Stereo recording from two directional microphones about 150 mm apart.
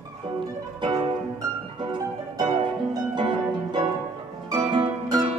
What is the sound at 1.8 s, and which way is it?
Harp, 30° right (ahead or behind).